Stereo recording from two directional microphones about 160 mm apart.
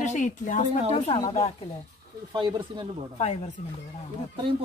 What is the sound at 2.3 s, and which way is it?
Speech, 30° right (ahead or behind).